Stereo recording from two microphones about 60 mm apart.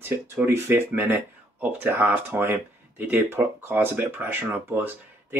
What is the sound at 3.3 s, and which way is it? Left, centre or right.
Speech, right.